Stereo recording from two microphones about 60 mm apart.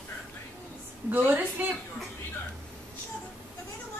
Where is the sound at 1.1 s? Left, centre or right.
Right.